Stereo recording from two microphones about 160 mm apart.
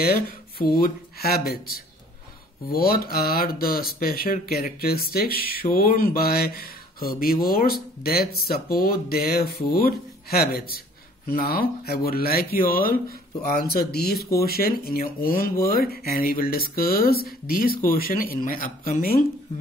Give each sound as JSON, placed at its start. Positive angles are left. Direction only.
{"t": 0.0, "sound": "speech", "side_deg": 70}
{"t": 13.6, "sound": "speech", "side_deg": 75}